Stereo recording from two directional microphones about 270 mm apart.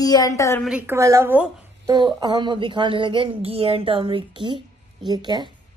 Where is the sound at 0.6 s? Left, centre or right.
Centre.